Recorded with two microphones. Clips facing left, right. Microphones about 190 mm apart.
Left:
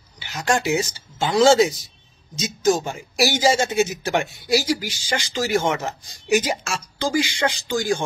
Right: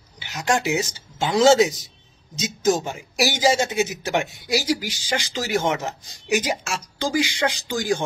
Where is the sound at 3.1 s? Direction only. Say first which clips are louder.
Left 1 dB; 15° right (ahead or behind).